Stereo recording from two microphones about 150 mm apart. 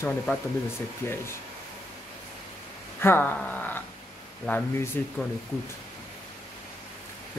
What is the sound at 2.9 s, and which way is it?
Speech, 15° left (ahead or behind).